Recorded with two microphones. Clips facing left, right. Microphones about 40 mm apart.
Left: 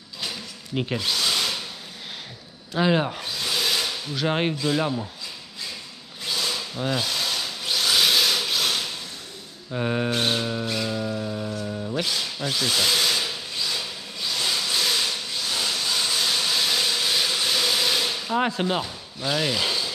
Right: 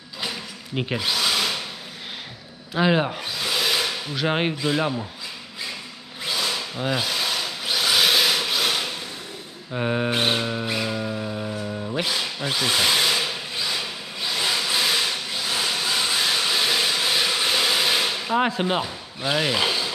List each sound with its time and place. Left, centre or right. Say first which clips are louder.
0.2 s tools: right 2 dB; centre
2.7 s speech: right 1 dB; centre
6.2 s wood: right 2 dB; centre
9.7 s a sound: right 1 dB; centre
10.1 s a sound: right 2 dB; right
18.5 s speech: right 2 dB; centre